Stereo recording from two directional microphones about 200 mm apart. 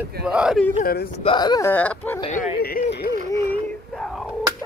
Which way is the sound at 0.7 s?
45° left (ahead or behind).